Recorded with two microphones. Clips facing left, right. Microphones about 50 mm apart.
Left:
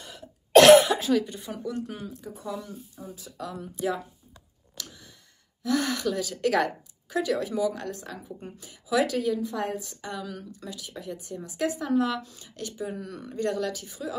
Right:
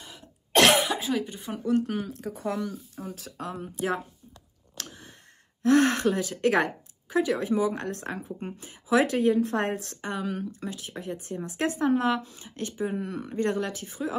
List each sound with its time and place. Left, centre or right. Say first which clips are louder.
0.0 s cough: left 3 dB; centre; by 1.7 s right
1.7 s speech: right 9 dB; right
2.3 s speech: right 6 dB; right
3.3 s a woman's voice: right 1 dB; right
4.8 s a sound: right 3 dB; right
5.6 s speech: right 6 dB; right
7.9 s a woman's voice: right 4 dB; right
10.0 s a woman's voice: right 8 dB; right